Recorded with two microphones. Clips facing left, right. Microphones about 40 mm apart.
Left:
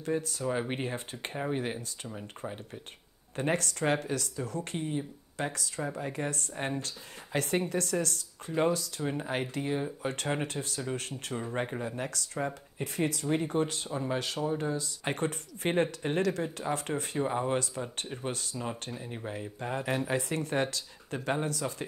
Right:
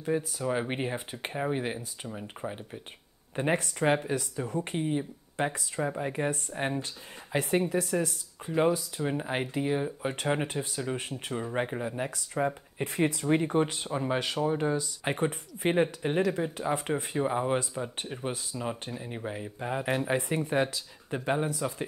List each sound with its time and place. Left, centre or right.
0.0 s speech: centre
12.7 s speech: right